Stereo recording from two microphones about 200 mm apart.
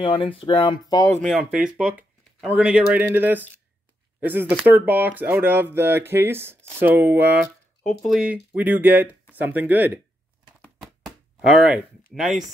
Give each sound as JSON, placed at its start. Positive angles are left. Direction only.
{"t": 0.0, "sound": "speech", "side_deg": 25}
{"t": 1.2, "sound": "speech", "side_deg": -5}
{"t": 10.6, "sound": "a sound", "side_deg": 0}
{"t": 11.4, "sound": "speech", "side_deg": -5}